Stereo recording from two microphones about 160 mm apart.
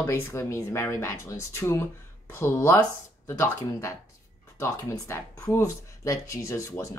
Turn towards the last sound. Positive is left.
turn(degrees=20)  # may be behind; listen again after turning